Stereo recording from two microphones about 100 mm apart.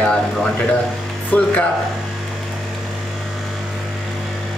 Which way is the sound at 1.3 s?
15° left (ahead or behind).